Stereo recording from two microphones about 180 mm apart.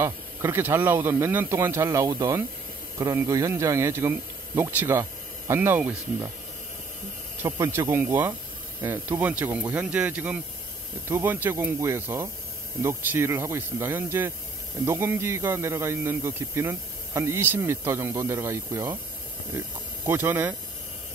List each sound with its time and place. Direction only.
0.0 s speech: 15° right (ahead or behind)
7.4 s speech: 15° right (ahead or behind)
20.1 s speech: 10° right (ahead or behind)